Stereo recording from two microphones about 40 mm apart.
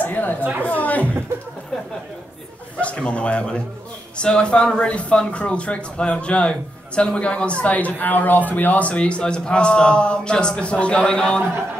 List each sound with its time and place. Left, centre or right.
0.0 s a sound: left
0.4 s a woman's voice: right
0.7 s speech: left
2.8 s a man's voice: left
7.7 s a man's voice: left; by 11.4 s centre